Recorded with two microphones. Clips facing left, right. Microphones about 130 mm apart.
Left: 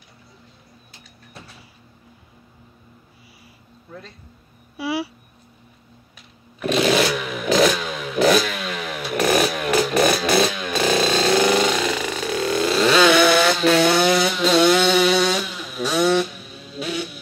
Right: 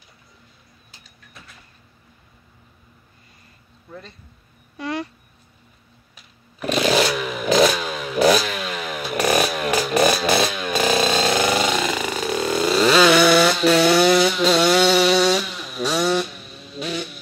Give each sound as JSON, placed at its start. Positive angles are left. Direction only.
{"t": 4.7, "sound": "speech", "side_deg": 5}
{"t": 6.6, "sound": "a sound", "side_deg": 0}
{"t": 7.7, "sound": "motorcycle", "side_deg": 0}
{"t": 11.1, "sound": "vehicle", "side_deg": 0}